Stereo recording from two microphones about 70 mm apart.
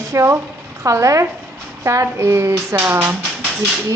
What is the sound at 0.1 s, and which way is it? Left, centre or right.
A woman's voice, right.